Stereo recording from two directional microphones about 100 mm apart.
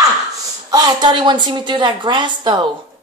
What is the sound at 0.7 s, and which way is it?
A woman's voice, 45° right (ahead or behind).